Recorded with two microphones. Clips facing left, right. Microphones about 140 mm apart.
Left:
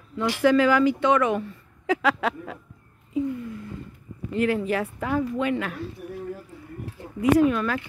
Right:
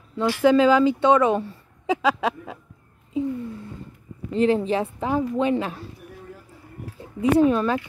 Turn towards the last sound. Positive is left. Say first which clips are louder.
# right 2 dB
turn(degrees=-30)  # may be behind; listen again after turning